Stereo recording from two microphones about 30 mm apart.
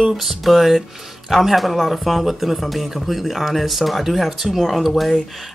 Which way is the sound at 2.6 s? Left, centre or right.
Centre.